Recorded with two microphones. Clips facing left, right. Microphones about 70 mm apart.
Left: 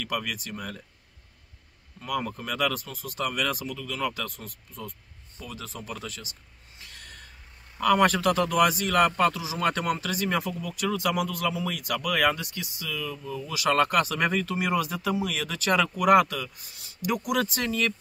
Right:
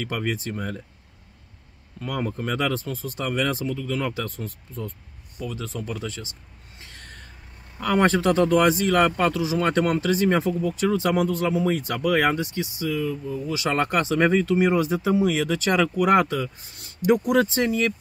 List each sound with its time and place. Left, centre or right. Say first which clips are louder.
0.0 s speech: right 4 dB; right
2.0 s speech: right 3 dB; right
6.0 s speech: right 6 dB; right
6.8 s a sound: right 2 dB; right
7.8 s speech: right 1 dB; right